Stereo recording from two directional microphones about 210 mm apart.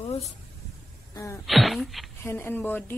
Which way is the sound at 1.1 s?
15° left (ahead or behind).